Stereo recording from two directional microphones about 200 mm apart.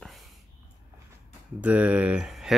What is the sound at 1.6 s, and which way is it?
Speech, 5° right (ahead or behind).